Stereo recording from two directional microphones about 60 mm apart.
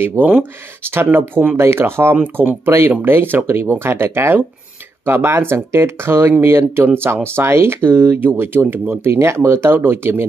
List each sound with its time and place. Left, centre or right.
0.2 s speech: right
0.8 s speech: right
3.4 s speech: right